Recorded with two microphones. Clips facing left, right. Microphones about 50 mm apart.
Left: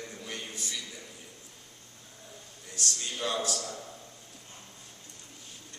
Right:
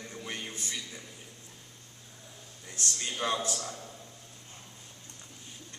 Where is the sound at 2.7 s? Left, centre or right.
Right.